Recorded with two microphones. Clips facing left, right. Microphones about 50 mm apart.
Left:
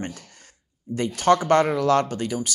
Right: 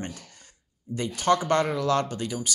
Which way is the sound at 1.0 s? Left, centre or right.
Centre.